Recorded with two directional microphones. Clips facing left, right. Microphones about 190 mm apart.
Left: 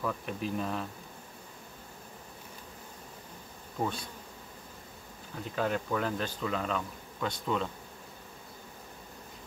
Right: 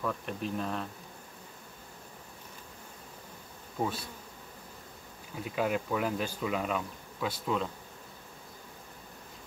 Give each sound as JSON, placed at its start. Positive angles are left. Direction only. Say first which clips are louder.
{"t": 0.0, "sound": "speech", "louder": "even", "side_deg": 0}
{"t": 3.8, "sound": "speech", "louder": "even", "side_deg": -10}
{"t": 5.3, "sound": "speech", "louder": "right 1 dB", "side_deg": -10}